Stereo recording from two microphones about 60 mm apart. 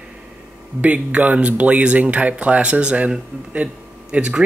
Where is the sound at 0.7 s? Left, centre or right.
Right.